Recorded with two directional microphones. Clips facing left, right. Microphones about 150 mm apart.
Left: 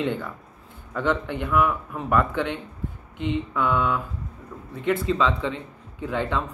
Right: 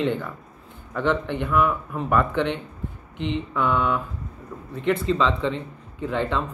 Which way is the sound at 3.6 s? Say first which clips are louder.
Right 2 dB; 10° left (ahead or behind).